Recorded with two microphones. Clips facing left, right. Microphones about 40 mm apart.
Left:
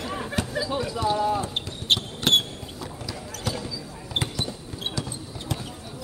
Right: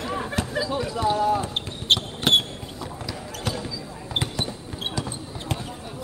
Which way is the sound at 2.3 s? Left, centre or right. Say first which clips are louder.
Right 1 dB; centre.